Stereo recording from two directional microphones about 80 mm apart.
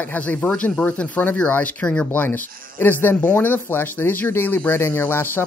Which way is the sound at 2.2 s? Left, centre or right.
Left.